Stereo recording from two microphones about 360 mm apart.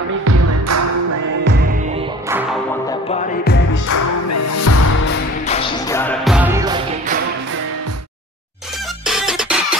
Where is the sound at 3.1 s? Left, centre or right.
Left.